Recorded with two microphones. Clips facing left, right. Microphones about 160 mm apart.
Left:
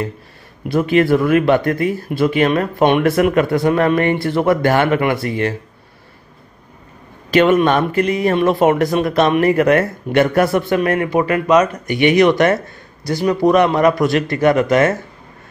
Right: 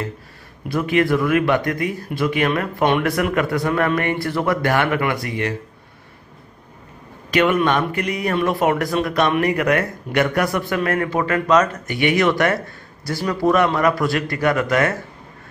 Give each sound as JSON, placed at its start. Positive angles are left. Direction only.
{"t": 0.7, "sound": "speech", "side_deg": 30}
{"t": 7.2, "sound": "speech", "side_deg": 30}